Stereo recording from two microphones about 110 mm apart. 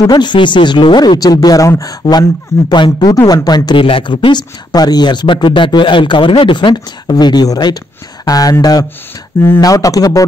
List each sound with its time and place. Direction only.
0.0 s speech: 40° left (ahead or behind)